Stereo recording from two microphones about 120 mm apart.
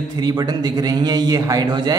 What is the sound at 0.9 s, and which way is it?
A man's voice, 35° right (ahead or behind).